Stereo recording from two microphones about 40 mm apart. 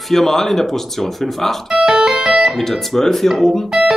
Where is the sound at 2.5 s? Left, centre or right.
Centre.